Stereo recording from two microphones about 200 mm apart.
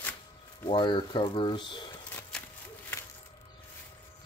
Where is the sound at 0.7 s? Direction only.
25° left (ahead or behind).